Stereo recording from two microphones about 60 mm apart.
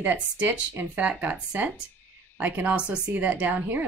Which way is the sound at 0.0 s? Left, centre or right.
Right.